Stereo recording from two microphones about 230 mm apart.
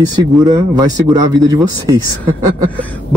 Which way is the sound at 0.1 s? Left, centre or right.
Centre.